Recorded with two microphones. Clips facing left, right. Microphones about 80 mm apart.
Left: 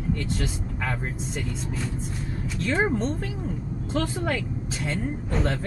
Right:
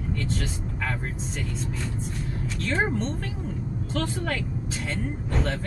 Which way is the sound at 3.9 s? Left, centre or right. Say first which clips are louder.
Left 3 dB; centre.